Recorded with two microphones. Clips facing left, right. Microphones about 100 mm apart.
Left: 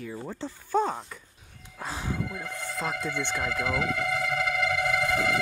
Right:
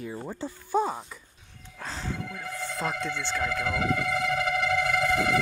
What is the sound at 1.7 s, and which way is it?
Speech, 10° left (ahead or behind).